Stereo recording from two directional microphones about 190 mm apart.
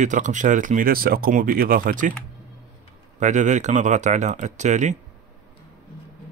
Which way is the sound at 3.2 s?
40° right (ahead or behind).